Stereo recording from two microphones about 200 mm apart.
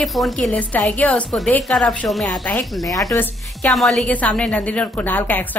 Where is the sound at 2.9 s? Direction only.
15° left (ahead or behind).